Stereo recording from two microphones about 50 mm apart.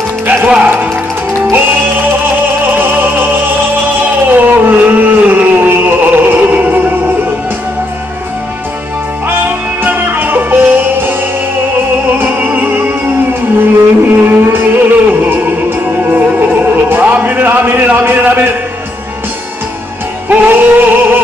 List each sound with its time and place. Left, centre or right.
0.3 s music: right
1.5 s music: right
4.3 s a sound: right
9.8 s music: right
14.0 s music: right
20.2 s music: right